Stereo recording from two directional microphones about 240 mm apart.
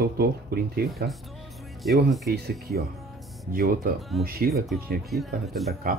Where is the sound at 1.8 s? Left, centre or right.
Centre.